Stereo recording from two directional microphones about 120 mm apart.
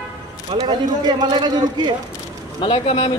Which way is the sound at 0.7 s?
35° right (ahead or behind).